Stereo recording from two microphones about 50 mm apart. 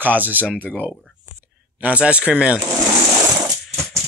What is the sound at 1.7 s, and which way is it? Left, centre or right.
Speech, right.